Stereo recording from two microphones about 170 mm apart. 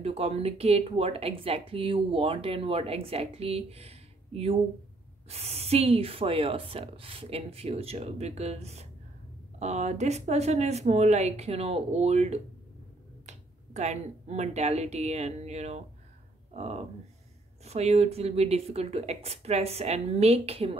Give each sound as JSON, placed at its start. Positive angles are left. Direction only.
{"t": 0.0, "sound": "speech", "side_deg": -35}